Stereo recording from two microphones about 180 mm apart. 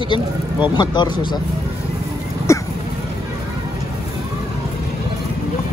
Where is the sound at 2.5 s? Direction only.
15° left (ahead or behind).